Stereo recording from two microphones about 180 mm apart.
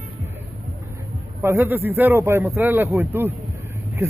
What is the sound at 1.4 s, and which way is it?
A man's voice, 15° right (ahead or behind).